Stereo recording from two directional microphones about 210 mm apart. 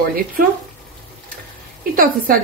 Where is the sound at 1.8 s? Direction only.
40° right (ahead or behind).